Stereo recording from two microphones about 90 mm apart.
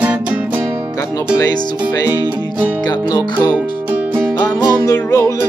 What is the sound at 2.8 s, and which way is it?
Music, 50° left (ahead or behind).